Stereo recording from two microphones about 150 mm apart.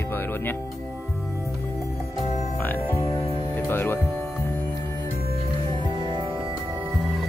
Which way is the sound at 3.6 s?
15° left (ahead or behind).